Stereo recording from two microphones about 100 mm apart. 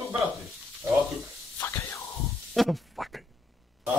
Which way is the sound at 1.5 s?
25° left (ahead or behind).